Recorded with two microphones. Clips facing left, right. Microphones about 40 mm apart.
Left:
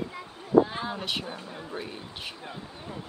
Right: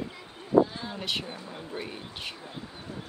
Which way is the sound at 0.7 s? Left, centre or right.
Left.